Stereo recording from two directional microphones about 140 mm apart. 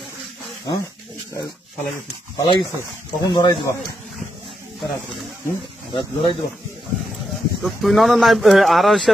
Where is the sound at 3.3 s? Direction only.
30° left (ahead or behind).